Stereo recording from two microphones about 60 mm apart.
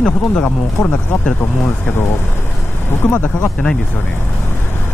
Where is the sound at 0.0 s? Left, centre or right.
Centre.